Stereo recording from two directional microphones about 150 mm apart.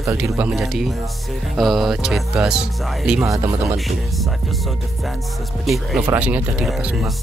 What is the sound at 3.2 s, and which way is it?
Speech, 20° right (ahead or behind).